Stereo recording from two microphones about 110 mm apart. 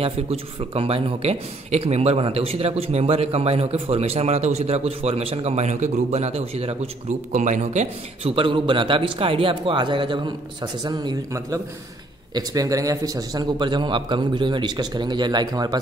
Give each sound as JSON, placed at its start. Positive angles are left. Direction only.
{"t": 0.0, "sound": "speech", "side_deg": -60}
{"t": 12.4, "sound": "a man's voice", "side_deg": -35}